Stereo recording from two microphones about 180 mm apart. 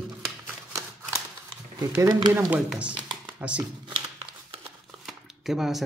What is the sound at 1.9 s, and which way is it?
Speech, 20° right (ahead or behind).